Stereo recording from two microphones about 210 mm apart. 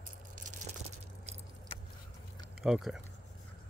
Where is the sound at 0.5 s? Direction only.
35° right (ahead or behind).